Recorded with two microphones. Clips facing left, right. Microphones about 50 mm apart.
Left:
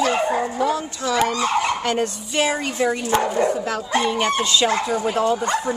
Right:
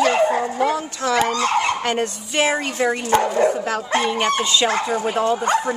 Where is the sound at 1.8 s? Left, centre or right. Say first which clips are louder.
Even; right.